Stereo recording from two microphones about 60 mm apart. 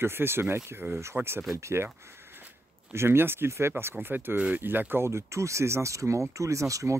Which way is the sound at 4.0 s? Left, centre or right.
Right.